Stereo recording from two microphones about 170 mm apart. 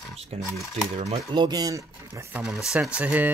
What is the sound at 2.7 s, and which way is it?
Speech, 5° right (ahead or behind).